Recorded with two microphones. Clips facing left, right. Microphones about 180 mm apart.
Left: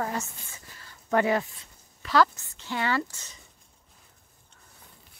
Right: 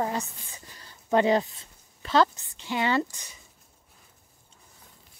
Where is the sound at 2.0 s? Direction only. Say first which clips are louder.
Even; 25° right (ahead or behind).